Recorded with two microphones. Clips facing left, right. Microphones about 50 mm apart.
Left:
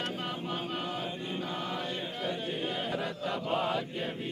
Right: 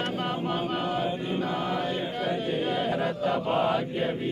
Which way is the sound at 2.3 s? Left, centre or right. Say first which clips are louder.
Right 5 dB; centre.